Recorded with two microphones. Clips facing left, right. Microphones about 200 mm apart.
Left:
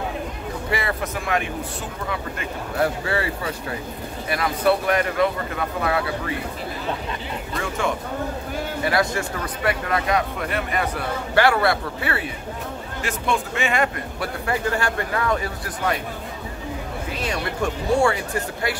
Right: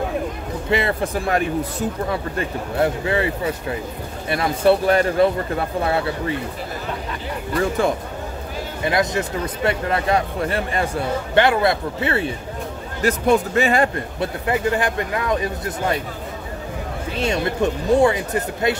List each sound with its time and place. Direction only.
0.7 s speech: 25° right (ahead or behind)
2.8 s speech: 20° right (ahead or behind)
8.8 s speech: 20° right (ahead or behind)
13.0 s speech: 40° right (ahead or behind)
14.2 s speech: 20° right (ahead or behind)
17.2 s speech: 25° right (ahead or behind)